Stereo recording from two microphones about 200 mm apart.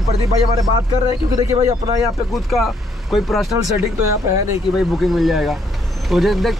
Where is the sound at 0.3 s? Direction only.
20° right (ahead or behind).